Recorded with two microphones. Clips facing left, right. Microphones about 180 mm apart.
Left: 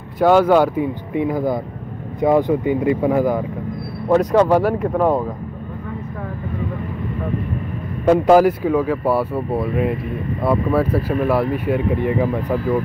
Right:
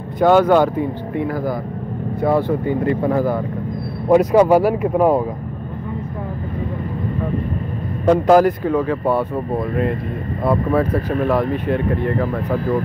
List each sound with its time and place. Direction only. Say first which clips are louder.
0.2 s speech: even; 5° left (ahead or behind)
1.1 s speech: left 3 dB; 15° left (ahead or behind)
4.1 s speech: right 2 dB; 10° right (ahead or behind)
8.0 s speech: even; 5° left (ahead or behind)